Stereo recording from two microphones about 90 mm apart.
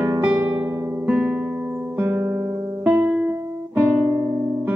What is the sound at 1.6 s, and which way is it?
Music, 20° right (ahead or behind).